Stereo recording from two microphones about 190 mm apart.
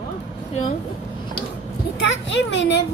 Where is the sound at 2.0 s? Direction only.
70° left (ahead or behind).